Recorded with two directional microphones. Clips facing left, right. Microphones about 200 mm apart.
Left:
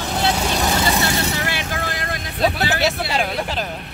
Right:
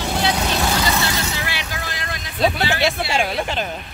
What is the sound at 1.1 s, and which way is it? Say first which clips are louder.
Vehicle: left 3 dB; 35° left (ahead or behind).